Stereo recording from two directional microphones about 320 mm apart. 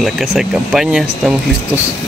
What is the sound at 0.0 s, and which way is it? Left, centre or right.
Speech, centre.